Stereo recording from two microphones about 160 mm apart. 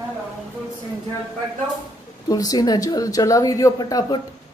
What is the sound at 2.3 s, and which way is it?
Speech, 25° left (ahead or behind).